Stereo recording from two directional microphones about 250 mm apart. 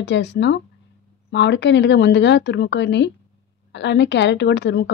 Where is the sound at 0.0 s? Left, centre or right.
Left.